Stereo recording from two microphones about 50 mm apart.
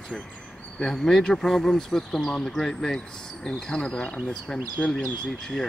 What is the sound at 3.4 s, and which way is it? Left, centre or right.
Speech, centre.